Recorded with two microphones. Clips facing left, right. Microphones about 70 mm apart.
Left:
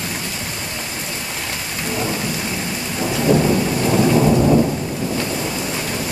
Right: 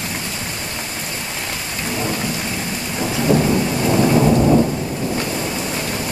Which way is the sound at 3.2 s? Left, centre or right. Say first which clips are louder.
Even; centre.